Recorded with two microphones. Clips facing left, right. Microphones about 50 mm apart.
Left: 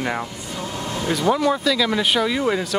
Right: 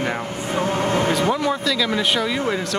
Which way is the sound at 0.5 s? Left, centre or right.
Right.